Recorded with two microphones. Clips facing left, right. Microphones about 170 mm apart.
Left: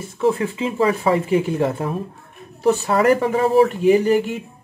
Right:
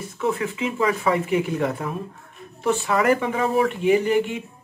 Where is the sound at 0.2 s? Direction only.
30° left (ahead or behind).